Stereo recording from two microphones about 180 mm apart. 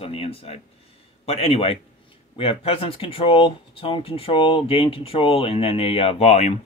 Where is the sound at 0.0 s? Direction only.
30° left (ahead or behind).